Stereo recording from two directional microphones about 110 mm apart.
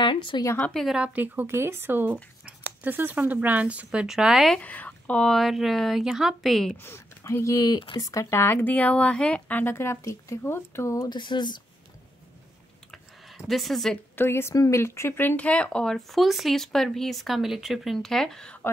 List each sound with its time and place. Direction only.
0.0 s a sound: 50° left (ahead or behind)
0.7 s speech: 5° right (ahead or behind)
4.6 s speech: 15° left (ahead or behind)
6.8 s a woman's voice: 20° left (ahead or behind)
11.1 s speech: 45° left (ahead or behind)
13.5 s speech: centre (ahead or behind)
14.1 s speech: 20° left (ahead or behind); by 18.6 s 5° left (ahead or behind)